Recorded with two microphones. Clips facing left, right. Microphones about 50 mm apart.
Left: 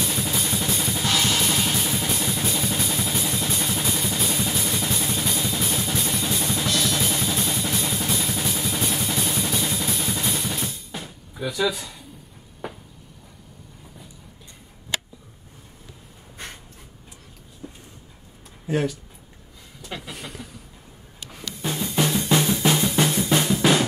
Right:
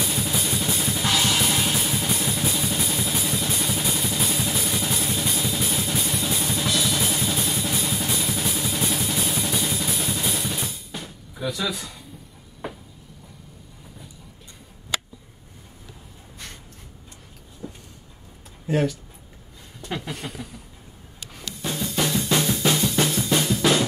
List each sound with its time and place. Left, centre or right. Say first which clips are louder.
0.0 s music: even; centre
18.7 s speech: right 1 dB; centre
20.1 s a sound: right 3 dB; centre
21.9 s drum: left 2 dB; centre